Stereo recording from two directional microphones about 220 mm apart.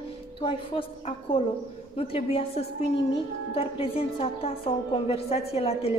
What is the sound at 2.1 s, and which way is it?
A woman's voice, 25° left (ahead or behind).